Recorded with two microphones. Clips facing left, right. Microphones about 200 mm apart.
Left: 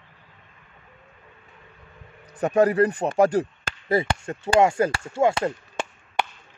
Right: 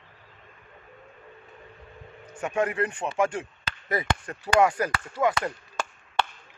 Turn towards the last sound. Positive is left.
turn(degrees=25)  # may be behind; listen again after turning